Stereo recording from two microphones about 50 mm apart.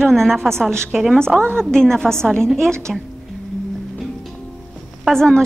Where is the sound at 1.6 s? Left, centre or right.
Centre.